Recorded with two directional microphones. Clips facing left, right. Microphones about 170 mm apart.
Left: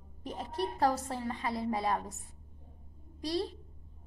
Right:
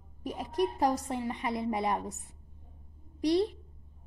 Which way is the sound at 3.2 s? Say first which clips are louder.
Right 7 dB; 20° right (ahead or behind).